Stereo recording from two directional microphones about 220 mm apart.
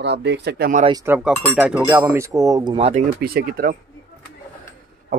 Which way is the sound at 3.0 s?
45° right (ahead or behind).